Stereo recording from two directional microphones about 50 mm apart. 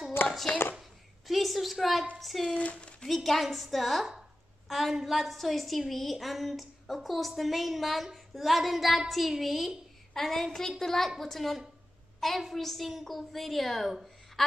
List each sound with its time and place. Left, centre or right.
1.2 s a woman's voice: centre
2.5 s speech: left
3.3 s a woman's voice: centre